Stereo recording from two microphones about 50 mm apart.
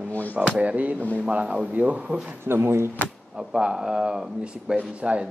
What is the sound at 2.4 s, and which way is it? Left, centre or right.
Speech, right.